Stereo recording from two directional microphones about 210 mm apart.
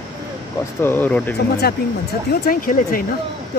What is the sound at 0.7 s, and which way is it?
Speech, 10° left (ahead or behind).